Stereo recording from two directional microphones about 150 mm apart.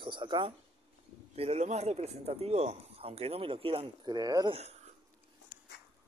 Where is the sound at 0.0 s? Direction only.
35° right (ahead or behind).